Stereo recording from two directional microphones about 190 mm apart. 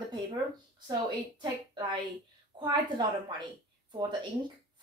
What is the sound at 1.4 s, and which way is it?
Speech, 25° right (ahead or behind).